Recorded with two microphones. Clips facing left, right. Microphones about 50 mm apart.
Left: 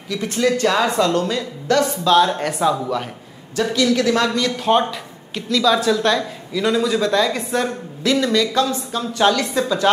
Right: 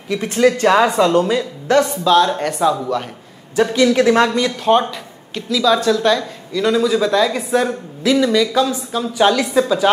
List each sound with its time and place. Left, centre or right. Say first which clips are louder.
0.1 s speech: right 4 dB; right
2.0 s speech: right 1 dB; centre
3.5 s speech: right 4 dB; right
4.3 s speech: right 2 dB; centre
4.6 s speech: right 2 dB; centre